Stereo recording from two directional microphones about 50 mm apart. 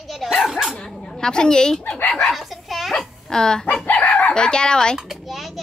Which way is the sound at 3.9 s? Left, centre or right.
Left.